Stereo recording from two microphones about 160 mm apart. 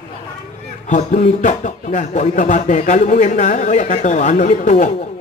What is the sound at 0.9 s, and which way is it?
Speech, 50° left (ahead or behind).